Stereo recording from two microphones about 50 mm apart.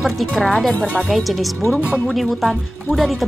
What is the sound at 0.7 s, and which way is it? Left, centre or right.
Speech, left.